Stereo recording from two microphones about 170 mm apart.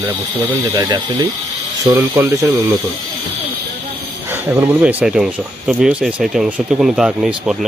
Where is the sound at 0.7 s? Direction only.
25° right (ahead or behind).